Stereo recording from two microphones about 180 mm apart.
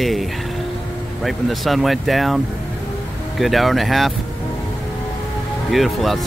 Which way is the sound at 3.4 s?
Centre (ahead or behind).